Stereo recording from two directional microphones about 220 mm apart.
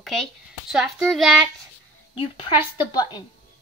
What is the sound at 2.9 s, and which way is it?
Speech, 20° left (ahead or behind).